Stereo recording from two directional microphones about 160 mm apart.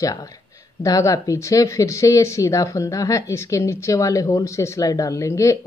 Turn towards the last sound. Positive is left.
turn(degrees=20)  # may be behind; listen again after turning